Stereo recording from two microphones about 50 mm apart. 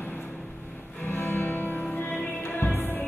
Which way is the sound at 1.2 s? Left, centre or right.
Left.